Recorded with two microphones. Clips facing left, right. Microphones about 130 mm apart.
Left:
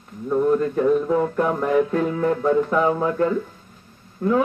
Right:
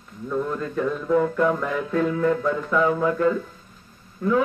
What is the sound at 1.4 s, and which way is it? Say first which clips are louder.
Music: left 3 dB; 30° left (ahead or behind).